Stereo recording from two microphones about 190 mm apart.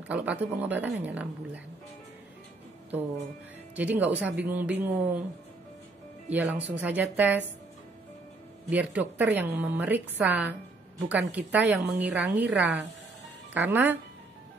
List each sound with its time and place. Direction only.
0.1 s a woman's voice: 5° right (ahead or behind)
3.7 s a woman's voice: 10° right (ahead or behind)
6.3 s a woman's voice: 10° right (ahead or behind)
8.6 s a woman's voice: 10° right (ahead or behind)
12.2 s a woman's voice: 65° right (ahead or behind)
12.4 s a woman's voice: 5° right (ahead or behind)